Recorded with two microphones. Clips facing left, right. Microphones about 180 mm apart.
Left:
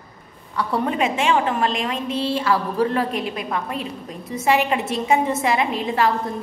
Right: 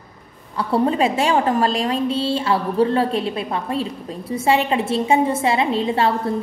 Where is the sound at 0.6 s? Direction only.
30° right (ahead or behind).